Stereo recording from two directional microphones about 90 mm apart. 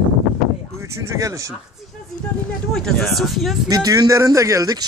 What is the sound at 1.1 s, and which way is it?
Speech, 40° right (ahead or behind).